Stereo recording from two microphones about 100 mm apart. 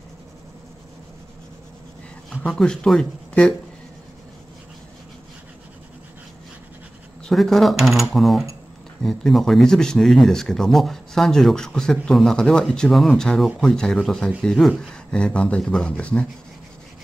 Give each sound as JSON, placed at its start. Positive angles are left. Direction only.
{"t": 2.2, "sound": "speech", "side_deg": 5}
{"t": 7.2, "sound": "speech", "side_deg": 0}